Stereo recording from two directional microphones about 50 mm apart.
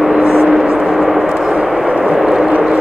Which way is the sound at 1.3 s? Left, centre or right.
Centre.